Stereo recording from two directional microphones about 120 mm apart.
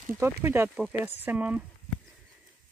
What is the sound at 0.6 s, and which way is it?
Speech, 10° right (ahead or behind).